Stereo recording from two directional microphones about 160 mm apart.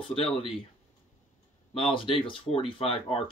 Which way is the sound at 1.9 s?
35° left (ahead or behind).